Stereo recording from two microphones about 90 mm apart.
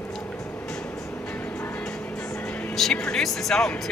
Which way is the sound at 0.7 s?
15° left (ahead or behind).